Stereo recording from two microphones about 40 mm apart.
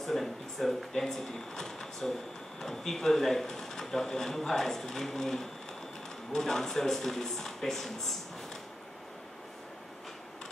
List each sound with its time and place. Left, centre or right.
0.0 s speech: centre